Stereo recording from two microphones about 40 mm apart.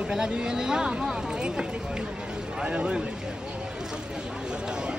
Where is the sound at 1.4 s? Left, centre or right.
Right.